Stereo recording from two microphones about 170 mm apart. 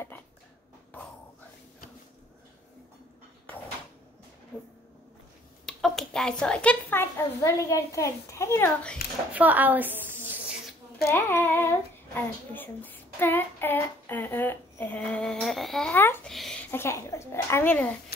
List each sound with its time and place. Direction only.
0.9 s a sound: 10° left (ahead or behind)
4.5 s a sound: 10° left (ahead or behind)
5.7 s speech: centre (ahead or behind)
9.3 s a woman's voice: 10° right (ahead or behind)
11.1 s speech: 15° left (ahead or behind)
16.3 s speech: centre (ahead or behind)
16.7 s speech: 15° left (ahead or behind)